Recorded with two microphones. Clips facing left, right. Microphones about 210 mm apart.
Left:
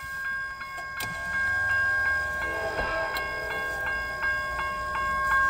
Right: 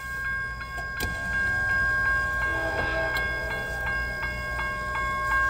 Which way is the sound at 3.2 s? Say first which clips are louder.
Right 1 dB; centre (ahead or behind).